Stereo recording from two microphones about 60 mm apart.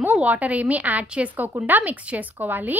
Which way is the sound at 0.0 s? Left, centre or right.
Right.